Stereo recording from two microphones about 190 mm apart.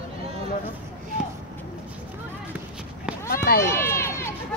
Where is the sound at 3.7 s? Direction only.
15° left (ahead or behind).